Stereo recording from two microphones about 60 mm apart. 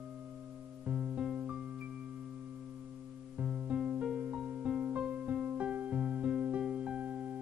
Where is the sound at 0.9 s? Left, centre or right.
Right.